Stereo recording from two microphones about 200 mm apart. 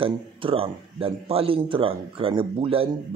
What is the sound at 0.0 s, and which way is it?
Speech, 25° right (ahead or behind).